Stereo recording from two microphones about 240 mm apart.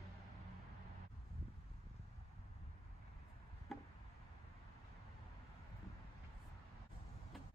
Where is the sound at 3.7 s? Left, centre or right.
Centre.